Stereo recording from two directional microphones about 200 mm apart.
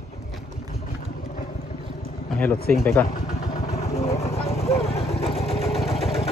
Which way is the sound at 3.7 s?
35° left (ahead or behind).